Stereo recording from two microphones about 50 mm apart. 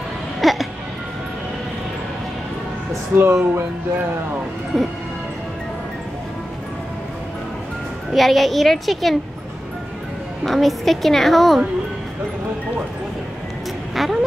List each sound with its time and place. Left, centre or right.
0.4 s music: centre
2.9 s speech: right
4.7 s a woman's voice: centre
8.1 s a woman's voice: centre
10.4 s a woman's voice: centre
13.9 s a woman's voice: centre